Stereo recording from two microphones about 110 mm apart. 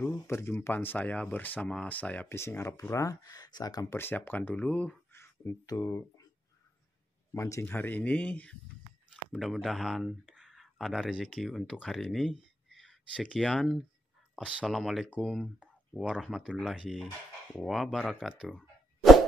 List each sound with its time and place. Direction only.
0.0 s speech: 20° left (ahead or behind); by 3.8 s 40° left (ahead or behind)
3.9 s speech: 20° left (ahead or behind)
5.1 s a sound: 20° left (ahead or behind)
5.7 s speech: 35° left (ahead or behind)
7.3 s speech: 30° left (ahead or behind)
7.6 s speech: 15° left (ahead or behind); by 18.6 s 10° right (ahead or behind)